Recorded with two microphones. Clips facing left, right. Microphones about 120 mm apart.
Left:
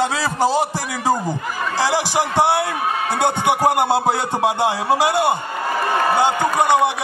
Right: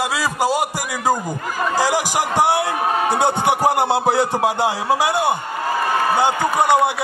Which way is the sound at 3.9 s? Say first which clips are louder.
Right 2 dB; 20° left (ahead or behind).